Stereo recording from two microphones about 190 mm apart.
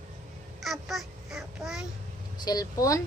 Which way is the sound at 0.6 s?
Centre (ahead or behind).